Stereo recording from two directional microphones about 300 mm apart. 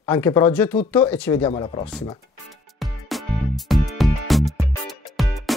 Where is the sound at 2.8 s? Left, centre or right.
Centre.